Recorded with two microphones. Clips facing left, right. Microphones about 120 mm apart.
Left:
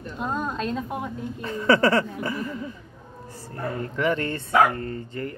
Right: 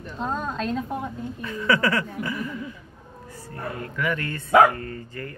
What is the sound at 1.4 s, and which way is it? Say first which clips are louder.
Speech: left 3 dB; 35° left (ahead or behind).